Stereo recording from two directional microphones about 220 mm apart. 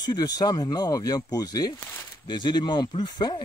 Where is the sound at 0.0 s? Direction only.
15° left (ahead or behind).